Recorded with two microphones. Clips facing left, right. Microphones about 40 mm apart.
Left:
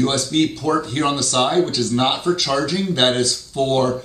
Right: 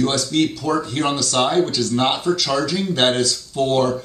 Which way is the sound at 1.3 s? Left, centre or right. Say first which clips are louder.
Even; centre.